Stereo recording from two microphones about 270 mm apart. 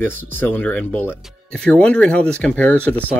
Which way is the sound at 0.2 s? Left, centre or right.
Centre.